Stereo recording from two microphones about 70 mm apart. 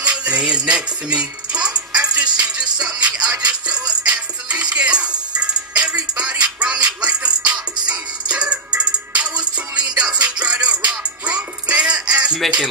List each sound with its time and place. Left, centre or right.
0.0 s music: centre
12.4 s speech: centre